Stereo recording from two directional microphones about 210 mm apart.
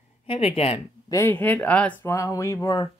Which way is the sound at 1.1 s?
10° left (ahead or behind).